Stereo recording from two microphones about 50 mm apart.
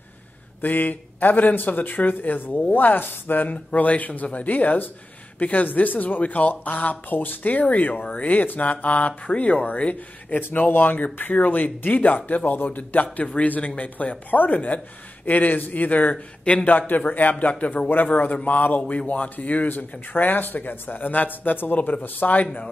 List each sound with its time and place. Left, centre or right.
0.6 s speech: left